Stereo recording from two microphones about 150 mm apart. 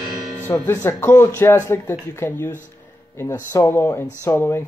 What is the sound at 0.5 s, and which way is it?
Speech, 25° left (ahead or behind).